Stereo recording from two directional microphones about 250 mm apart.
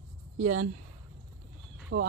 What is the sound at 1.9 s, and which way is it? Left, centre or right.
Speech, right.